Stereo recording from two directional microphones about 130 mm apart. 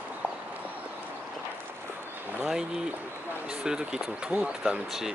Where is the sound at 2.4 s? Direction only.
5° right (ahead or behind).